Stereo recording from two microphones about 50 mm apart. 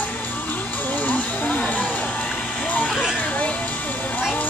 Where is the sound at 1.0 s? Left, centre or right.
Left.